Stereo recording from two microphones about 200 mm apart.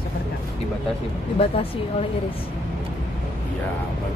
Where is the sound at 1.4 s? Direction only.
30° left (ahead or behind).